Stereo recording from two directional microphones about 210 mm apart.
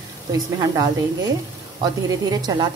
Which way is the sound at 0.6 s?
15° right (ahead or behind).